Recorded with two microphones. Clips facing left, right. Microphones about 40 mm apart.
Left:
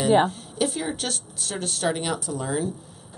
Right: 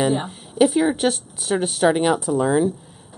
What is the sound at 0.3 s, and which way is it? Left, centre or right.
Speech, centre.